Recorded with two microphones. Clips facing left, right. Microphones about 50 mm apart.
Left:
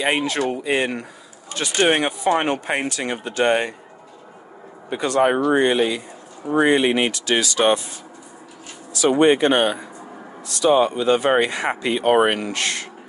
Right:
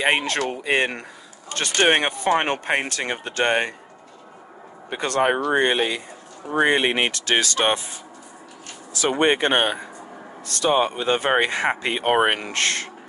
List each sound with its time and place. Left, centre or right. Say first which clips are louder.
0.0 s speech: left 1 dB; right
4.8 s speech: left 3 dB; right
9.2 s speech: left 3 dB; right
10.4 s speech: left 4 dB; right
10.7 s speech: left 4 dB; right
12.5 s speech: right 1 dB; right